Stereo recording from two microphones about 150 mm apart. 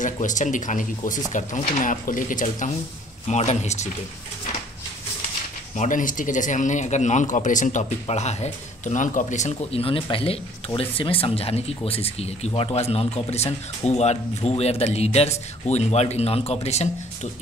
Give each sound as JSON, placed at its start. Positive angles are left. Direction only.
{"t": 0.0, "sound": "speech", "side_deg": 55}
{"t": 3.3, "sound": "speech", "side_deg": 50}
{"t": 5.8, "sound": "speech", "side_deg": 60}